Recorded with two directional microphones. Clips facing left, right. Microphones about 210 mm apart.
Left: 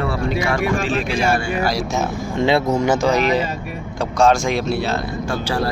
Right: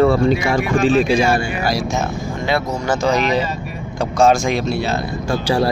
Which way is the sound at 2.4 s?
25° left (ahead or behind).